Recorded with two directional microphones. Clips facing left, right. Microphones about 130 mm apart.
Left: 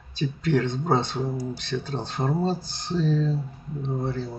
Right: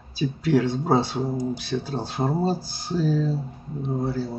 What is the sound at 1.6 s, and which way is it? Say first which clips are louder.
Speech: right 2 dB; 10° right (ahead or behind).